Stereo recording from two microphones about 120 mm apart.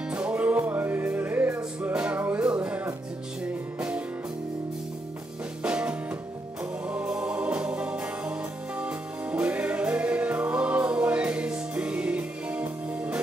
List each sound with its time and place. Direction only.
0.1 s music: 10° right (ahead or behind)
5.6 s music: 10° right (ahead or behind)